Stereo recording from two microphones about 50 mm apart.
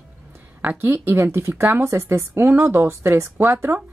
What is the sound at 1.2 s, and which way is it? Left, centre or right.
Speech, right.